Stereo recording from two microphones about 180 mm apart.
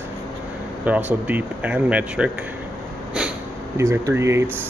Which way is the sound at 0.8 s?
10° right (ahead or behind).